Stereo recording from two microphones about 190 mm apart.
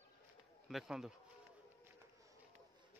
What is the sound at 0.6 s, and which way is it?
Speech, centre (ahead or behind).